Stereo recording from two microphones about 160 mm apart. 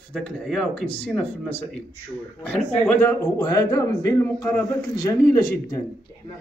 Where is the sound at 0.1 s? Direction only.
5° left (ahead or behind).